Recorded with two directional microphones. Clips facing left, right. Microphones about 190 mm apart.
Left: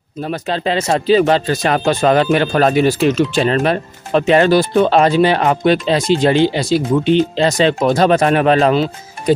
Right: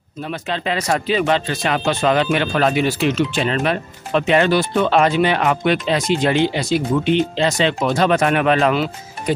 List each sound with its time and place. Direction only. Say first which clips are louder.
0.2 s speech: left 5 dB; 35° left (ahead or behind)